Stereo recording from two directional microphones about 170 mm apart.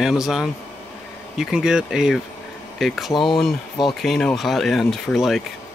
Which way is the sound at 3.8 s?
Centre (ahead or behind).